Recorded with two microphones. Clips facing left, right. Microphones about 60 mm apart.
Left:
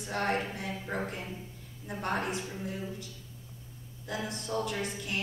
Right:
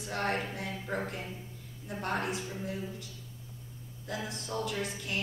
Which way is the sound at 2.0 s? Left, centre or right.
Left.